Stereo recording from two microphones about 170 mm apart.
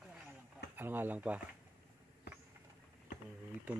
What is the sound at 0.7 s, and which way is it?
Speech, 10° right (ahead or behind).